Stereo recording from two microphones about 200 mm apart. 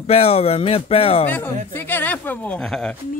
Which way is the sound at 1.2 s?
10° left (ahead or behind).